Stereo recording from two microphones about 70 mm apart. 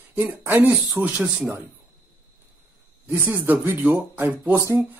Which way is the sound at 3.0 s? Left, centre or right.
Right.